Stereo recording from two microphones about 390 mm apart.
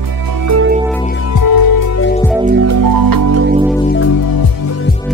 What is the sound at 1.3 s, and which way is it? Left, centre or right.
Music, left.